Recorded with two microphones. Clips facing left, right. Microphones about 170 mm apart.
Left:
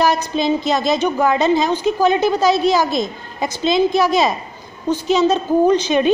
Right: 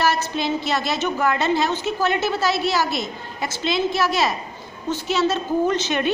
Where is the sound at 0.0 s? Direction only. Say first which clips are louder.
Left 5 dB; 15° left (ahead or behind).